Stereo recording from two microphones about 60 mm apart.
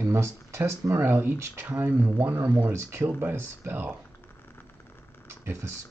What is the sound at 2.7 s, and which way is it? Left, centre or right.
Speech, right.